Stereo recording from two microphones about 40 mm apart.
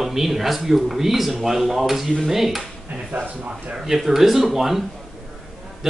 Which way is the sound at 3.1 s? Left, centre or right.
Right.